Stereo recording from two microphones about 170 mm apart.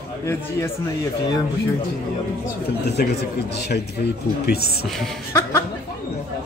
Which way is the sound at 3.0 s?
75° left (ahead or behind).